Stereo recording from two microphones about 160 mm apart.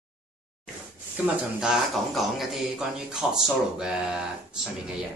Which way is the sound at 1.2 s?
5° right (ahead or behind).